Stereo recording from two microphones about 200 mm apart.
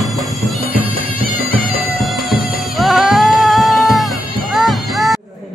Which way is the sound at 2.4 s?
45° left (ahead or behind).